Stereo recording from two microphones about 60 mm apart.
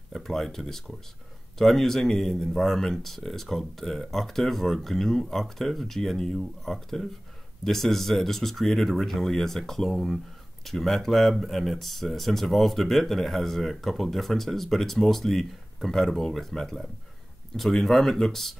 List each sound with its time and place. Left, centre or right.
0.1 s speech: centre